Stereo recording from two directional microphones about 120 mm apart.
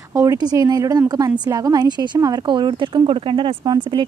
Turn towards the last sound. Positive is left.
turn(degrees=-40)  # may be behind; listen again after turning